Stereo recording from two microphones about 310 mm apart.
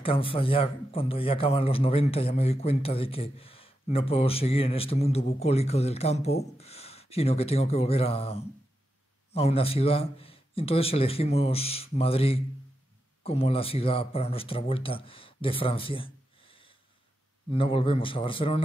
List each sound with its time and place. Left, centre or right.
0.0 s a man's voice: centre